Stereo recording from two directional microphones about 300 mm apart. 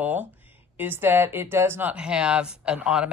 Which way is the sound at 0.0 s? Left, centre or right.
Centre.